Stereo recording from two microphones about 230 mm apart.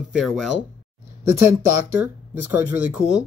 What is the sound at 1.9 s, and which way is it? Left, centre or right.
Speech, centre.